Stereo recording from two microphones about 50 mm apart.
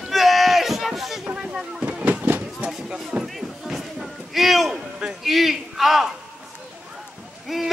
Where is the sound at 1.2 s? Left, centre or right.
Centre.